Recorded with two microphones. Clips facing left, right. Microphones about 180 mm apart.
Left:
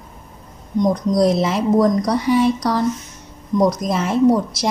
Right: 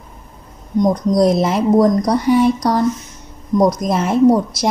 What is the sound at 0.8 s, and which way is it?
Speech, 45° right (ahead or behind).